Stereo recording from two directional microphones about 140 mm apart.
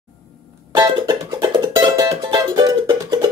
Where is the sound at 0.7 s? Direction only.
30° right (ahead or behind).